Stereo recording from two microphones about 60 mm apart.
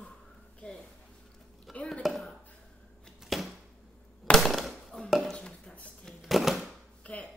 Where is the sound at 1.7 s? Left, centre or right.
Centre.